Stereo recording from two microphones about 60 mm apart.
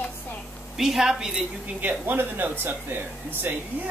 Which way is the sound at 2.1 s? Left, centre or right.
Right.